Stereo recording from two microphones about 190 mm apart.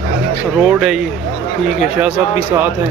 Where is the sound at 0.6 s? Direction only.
Centre (ahead or behind).